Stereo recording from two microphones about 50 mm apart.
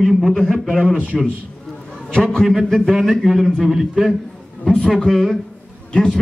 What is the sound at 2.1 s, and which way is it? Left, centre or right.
Speech, centre.